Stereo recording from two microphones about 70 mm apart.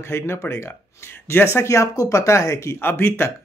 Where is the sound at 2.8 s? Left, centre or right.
Left.